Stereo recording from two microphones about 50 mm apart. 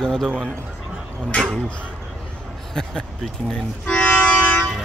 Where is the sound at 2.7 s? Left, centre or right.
Centre.